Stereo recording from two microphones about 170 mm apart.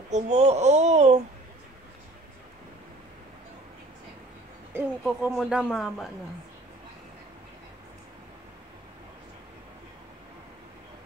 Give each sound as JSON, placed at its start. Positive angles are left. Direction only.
{"t": 0.1, "sound": "speech", "side_deg": -45}
{"t": 4.7, "sound": "speech", "side_deg": -5}